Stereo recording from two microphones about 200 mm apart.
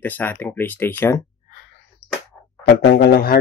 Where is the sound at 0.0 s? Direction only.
10° left (ahead or behind).